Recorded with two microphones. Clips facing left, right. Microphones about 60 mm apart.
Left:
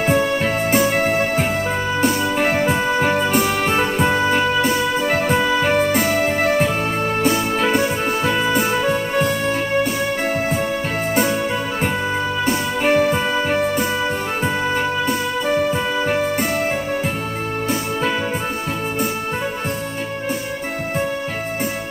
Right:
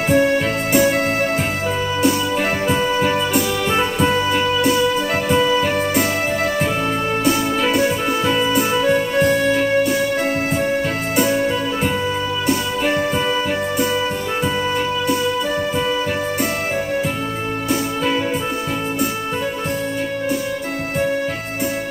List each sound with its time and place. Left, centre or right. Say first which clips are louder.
0.1 s music: right 5 dB; left
2.0 s music: even; left
7.2 s music: right 1 dB; left
11.1 s music: right 3 dB; left